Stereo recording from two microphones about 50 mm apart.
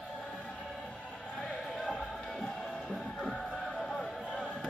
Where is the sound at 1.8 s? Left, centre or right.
Centre.